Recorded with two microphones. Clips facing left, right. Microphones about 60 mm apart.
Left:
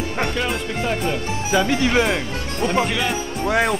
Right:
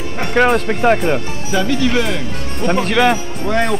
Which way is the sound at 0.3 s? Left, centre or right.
Right.